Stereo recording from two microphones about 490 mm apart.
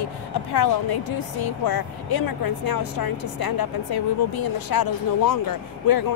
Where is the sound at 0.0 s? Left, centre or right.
Left.